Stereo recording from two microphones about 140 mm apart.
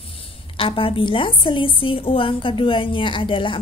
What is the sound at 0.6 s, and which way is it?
A woman's voice, 40° left (ahead or behind).